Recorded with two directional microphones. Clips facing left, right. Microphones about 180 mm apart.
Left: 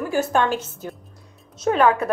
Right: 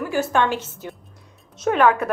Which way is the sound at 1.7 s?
30° left (ahead or behind).